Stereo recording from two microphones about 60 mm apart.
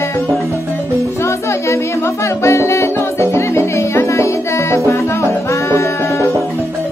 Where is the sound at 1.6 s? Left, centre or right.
Left.